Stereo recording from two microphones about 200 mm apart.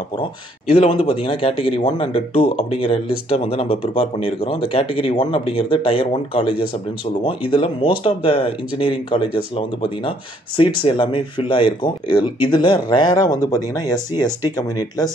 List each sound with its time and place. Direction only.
0.2 s speech: 30° left (ahead or behind)